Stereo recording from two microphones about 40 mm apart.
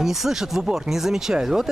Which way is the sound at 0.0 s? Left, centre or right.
Centre.